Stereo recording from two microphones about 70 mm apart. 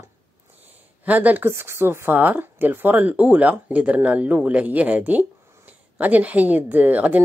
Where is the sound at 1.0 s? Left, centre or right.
Right.